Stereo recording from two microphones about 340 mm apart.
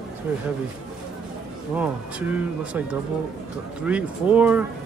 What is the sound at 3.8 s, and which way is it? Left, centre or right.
Speech, centre.